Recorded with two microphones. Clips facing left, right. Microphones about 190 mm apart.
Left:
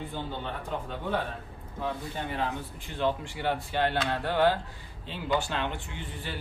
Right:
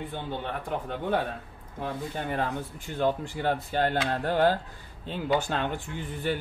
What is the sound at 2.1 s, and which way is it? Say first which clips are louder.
A man's voice: right 2 dB; 45° right (ahead or behind).